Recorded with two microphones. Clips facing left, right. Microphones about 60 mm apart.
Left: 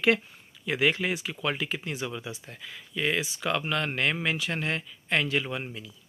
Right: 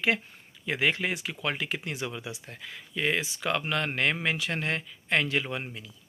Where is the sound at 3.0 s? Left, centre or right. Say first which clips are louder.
Even; right.